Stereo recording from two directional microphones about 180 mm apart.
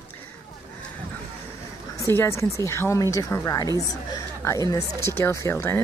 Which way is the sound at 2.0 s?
15° left (ahead or behind).